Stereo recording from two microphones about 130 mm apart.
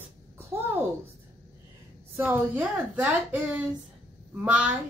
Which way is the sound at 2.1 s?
15° right (ahead or behind).